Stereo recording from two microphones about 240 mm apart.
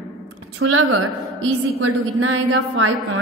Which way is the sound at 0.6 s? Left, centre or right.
Right.